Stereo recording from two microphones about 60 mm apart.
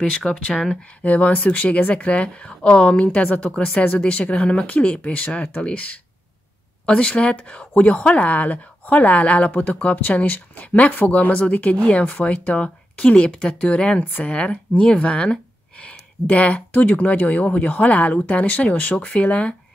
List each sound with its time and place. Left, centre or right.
0.1 s speech: centre
1.0 s speech: left